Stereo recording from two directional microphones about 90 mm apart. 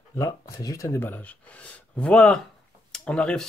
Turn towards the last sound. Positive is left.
turn(degrees=10)  # may be behind; listen again after turning